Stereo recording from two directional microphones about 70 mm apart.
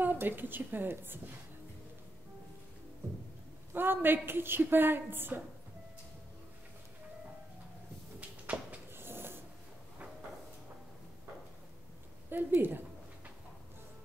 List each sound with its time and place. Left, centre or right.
0.0 s a woman's voice: right
3.7 s a woman's voice: right
8.5 s a sound: centre
8.9 s ratchet: right
12.3 s a woman's voice: right